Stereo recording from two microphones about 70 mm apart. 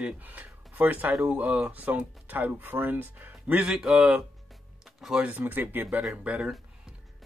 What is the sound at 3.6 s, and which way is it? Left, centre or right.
Speech, centre.